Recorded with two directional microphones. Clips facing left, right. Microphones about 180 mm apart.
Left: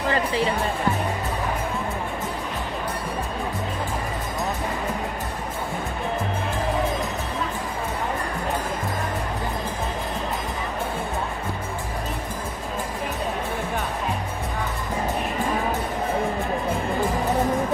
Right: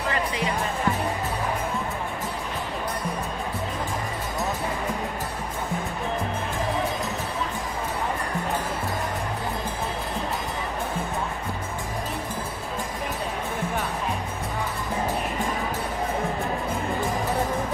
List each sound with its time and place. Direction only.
0.1 s music: 30° left (ahead or behind)